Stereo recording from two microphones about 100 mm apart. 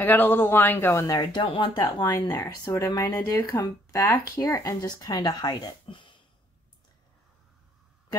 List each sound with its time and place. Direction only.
0.0 s speech: 20° left (ahead or behind)
1.0 s speech: 40° left (ahead or behind)
1.4 s speech: 60° left (ahead or behind)
2.0 s speech: 45° left (ahead or behind)
2.7 s speech: 35° left (ahead or behind); by 6.1 s 55° left (ahead or behind)